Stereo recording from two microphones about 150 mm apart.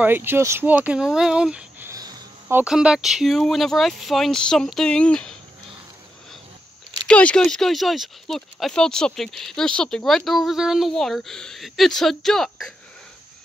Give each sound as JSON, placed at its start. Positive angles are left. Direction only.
{"t": 0.0, "sound": "speech", "side_deg": -15}
{"t": 1.9, "sound": "a sound", "side_deg": -25}
{"t": 2.4, "sound": "speech", "side_deg": -10}
{"t": 7.1, "sound": "speech", "side_deg": 5}